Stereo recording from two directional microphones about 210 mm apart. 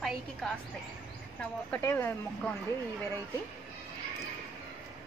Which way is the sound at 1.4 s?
10° left (ahead or behind).